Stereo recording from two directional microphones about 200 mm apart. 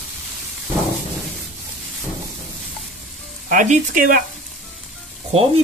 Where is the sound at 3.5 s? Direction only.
40° right (ahead or behind).